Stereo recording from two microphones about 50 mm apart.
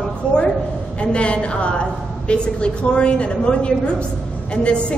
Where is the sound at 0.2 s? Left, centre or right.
Left.